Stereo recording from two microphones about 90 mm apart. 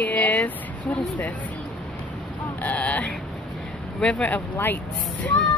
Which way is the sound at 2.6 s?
15° left (ahead or behind).